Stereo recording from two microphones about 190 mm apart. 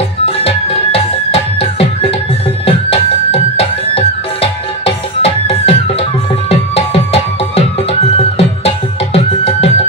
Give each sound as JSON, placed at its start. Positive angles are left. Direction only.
{"t": 0.4, "sound": "music", "side_deg": 30}